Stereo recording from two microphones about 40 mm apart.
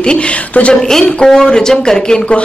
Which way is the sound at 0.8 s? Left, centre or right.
Centre.